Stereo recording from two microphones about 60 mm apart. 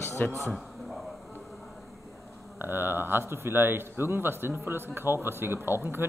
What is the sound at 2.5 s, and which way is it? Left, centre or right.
A man's voice, right.